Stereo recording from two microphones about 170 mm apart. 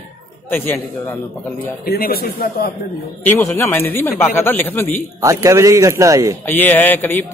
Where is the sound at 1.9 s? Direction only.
65° left (ahead or behind).